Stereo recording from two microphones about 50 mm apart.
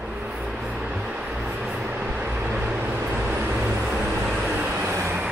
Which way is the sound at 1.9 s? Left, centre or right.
Right.